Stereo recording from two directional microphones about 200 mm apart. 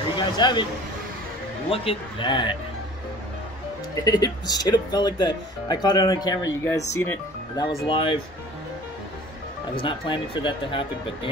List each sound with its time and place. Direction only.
0.1 s a man's voice: 20° left (ahead or behind)
1.7 s speech: 25° left (ahead or behind)
3.9 s speech: 20° left (ahead or behind)
7.8 s speech: 25° left (ahead or behind)
9.8 s speech: 25° left (ahead or behind)